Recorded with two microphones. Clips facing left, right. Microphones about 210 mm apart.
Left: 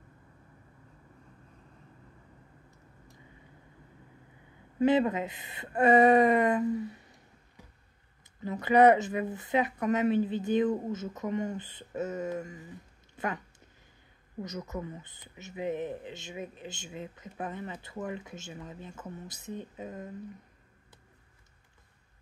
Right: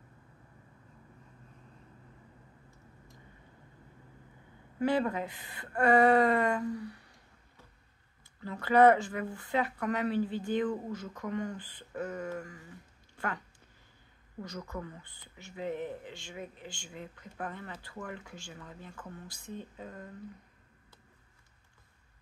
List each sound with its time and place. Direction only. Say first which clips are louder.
4.7 s speech: left 4 dB; 20° left (ahead or behind)
8.4 s speech: left 2 dB; 20° left (ahead or behind)
14.4 s speech: left 3 dB; 20° left (ahead or behind)